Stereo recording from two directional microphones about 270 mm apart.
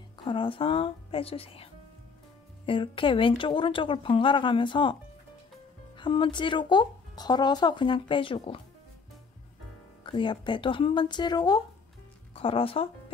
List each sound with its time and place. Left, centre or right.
0.2 s speech: centre
5.9 s speech: centre
10.0 s speech: centre